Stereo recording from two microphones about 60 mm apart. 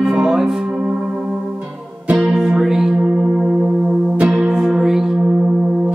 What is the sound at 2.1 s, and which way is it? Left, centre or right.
Music, right.